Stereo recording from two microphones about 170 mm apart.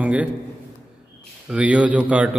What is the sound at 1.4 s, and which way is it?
Speech, 5° right (ahead or behind).